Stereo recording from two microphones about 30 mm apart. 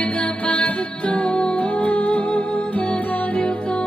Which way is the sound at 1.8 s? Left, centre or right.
Left.